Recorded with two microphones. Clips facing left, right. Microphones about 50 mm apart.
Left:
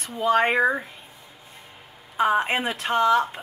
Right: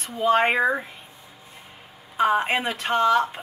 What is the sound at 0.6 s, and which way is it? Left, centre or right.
Speech, centre.